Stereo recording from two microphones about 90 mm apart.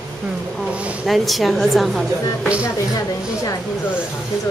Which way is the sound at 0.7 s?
15° right (ahead or behind).